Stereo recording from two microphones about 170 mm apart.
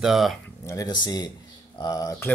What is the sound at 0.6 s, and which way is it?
Speech, 20° left (ahead or behind).